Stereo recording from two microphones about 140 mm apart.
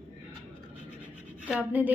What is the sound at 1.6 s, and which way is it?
Speech, 10° right (ahead or behind).